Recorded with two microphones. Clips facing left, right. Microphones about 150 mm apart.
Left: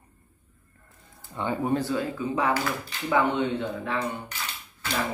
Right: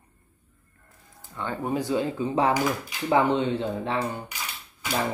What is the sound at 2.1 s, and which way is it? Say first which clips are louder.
Speech: right 3 dB; 30° right (ahead or behind).